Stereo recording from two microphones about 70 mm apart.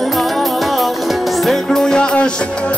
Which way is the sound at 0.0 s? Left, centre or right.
Centre.